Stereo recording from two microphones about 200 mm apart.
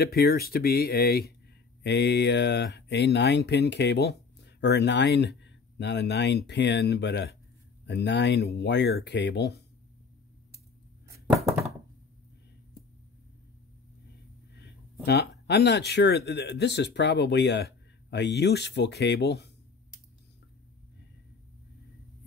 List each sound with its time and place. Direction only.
0.0 s speech: 50° left (ahead or behind)
15.0 s speech: 55° left (ahead or behind)